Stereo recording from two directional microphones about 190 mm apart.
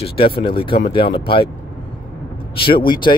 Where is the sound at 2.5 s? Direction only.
25° left (ahead or behind).